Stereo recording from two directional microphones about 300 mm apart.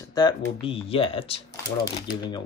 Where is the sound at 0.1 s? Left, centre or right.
Centre.